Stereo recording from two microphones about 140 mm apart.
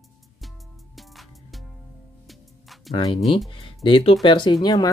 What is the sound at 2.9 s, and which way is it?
Speech, 50° left (ahead or behind).